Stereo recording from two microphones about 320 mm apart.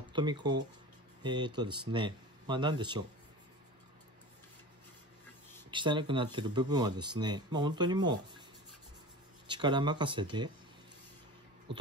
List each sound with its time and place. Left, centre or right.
0.1 s speech: centre
5.7 s speech: centre
9.5 s speech: centre
11.7 s a sound: centre